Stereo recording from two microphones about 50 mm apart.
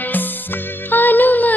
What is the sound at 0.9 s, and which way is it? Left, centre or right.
Music, left.